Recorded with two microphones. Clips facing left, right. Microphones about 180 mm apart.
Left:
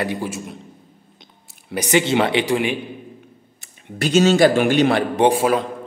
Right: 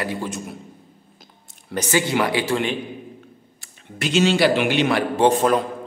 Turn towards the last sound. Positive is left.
turn(degrees=10)  # may be behind; listen again after turning